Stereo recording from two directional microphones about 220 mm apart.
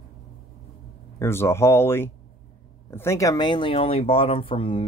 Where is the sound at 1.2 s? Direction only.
10° left (ahead or behind).